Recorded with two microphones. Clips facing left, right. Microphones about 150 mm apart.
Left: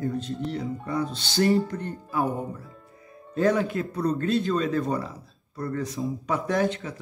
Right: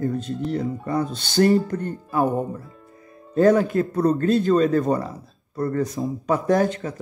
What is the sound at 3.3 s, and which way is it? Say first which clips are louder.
Speech: right 6 dB; 45° right (ahead or behind).